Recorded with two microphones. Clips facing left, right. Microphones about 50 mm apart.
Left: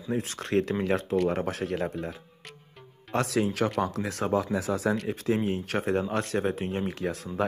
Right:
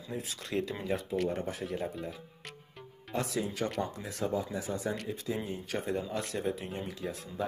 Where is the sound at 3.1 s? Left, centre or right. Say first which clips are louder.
Left 7 dB; left.